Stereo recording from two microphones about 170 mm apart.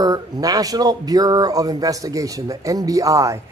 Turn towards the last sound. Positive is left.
turn(degrees=-20)  # may be behind; listen again after turning